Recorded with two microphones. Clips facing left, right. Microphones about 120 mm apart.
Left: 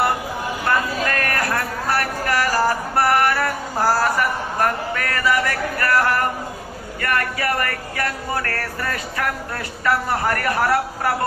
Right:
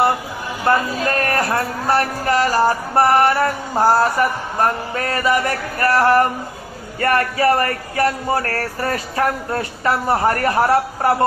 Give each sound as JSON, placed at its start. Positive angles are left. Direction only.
{"t": 0.7, "sound": "speech", "side_deg": -25}